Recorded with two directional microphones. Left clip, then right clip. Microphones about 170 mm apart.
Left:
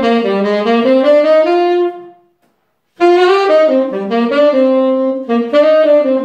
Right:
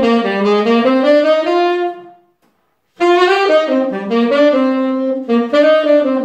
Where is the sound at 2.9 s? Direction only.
5° right (ahead or behind).